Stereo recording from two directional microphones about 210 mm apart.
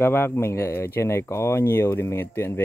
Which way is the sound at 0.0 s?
10° left (ahead or behind).